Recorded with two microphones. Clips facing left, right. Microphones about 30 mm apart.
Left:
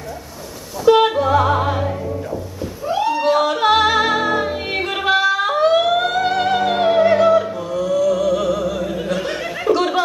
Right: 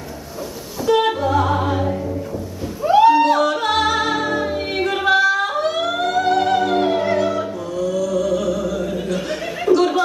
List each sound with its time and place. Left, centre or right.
0.8 s music: centre
2.8 s music: centre
3.2 s yodeling: centre
3.4 s music: centre